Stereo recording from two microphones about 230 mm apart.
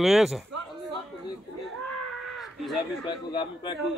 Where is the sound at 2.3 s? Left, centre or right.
Centre.